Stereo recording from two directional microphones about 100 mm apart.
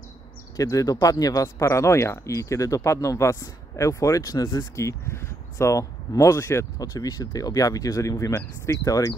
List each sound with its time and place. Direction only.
0.6 s speech: 35° left (ahead or behind)